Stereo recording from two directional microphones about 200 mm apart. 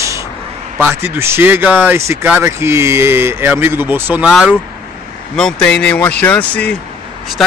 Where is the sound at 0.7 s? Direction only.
10° right (ahead or behind).